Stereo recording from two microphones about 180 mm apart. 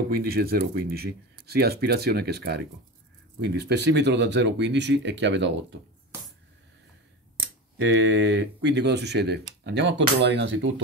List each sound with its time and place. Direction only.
0.1 s speech: 60° right (ahead or behind); by 5.8 s 80° right
7.7 s speech: 80° right